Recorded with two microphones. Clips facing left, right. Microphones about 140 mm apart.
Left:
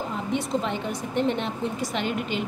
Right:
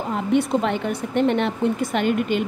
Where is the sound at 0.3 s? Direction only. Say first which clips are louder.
Right 7 dB; 60° right (ahead or behind).